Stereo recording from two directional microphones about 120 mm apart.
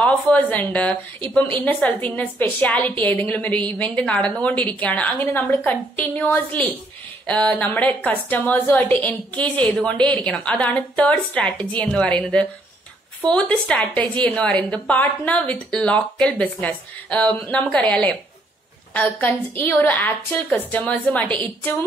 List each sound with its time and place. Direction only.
0.0 s a woman's voice: 10° left (ahead or behind)